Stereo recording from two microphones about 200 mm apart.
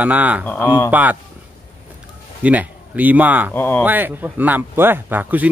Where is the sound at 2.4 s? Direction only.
10° right (ahead or behind).